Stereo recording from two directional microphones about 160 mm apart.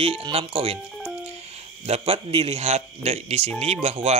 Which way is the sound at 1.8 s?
40° right (ahead or behind).